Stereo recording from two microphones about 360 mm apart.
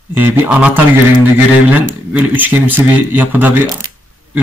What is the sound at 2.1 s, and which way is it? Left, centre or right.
Speech, centre.